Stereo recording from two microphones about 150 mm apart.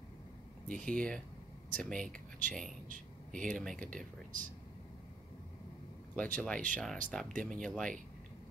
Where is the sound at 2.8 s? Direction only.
60° right (ahead or behind).